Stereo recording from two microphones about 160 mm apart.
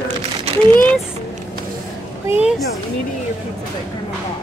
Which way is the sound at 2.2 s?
10° right (ahead or behind).